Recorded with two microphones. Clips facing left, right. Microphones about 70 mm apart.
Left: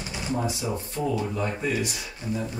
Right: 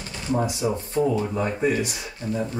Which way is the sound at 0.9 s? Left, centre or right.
Right.